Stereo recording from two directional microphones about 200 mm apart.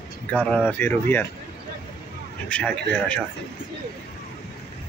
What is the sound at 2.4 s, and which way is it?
Speech, 5° left (ahead or behind).